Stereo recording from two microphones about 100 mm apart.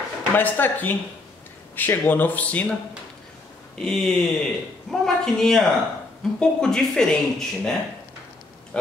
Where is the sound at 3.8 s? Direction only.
5° left (ahead or behind).